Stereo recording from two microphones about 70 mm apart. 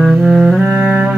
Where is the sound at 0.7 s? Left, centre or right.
Right.